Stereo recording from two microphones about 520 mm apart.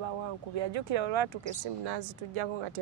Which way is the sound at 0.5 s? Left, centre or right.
Right.